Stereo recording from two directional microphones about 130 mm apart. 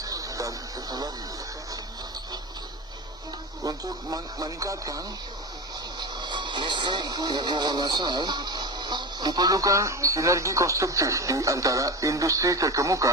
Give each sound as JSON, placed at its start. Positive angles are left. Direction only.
{"t": 0.0, "sound": "a sound", "side_deg": -25}
{"t": 3.6, "sound": "speech", "side_deg": -30}
{"t": 5.9, "sound": "speech", "side_deg": -35}